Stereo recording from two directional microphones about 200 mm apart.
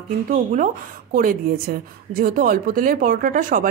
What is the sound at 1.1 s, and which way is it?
A woman's voice, 45° right (ahead or behind).